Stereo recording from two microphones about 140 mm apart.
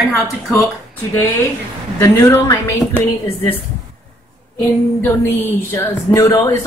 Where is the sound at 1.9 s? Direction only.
20° left (ahead or behind).